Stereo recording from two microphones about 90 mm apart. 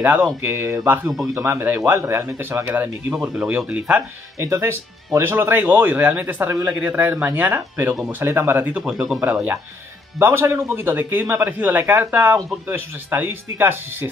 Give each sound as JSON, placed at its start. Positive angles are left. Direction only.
{"t": 0.4, "sound": "speech", "side_deg": -25}
{"t": 1.1, "sound": "speech", "side_deg": -5}
{"t": 1.4, "sound": "speech", "side_deg": -25}
{"t": 3.2, "sound": "speech", "side_deg": -10}
{"t": 4.4, "sound": "speech", "side_deg": -30}
{"t": 8.8, "sound": "speech", "side_deg": -5}
{"t": 9.2, "sound": "speech", "side_deg": -20}